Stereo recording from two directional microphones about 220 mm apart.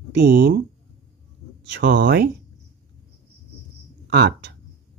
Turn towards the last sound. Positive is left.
turn(degrees=-50)  # may be behind; listen again after turning